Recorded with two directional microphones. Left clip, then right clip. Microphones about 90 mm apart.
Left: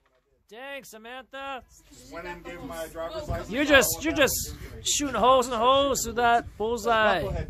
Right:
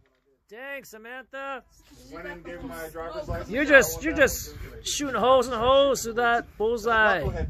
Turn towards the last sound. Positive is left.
turn(degrees=10)  # may be behind; listen again after turning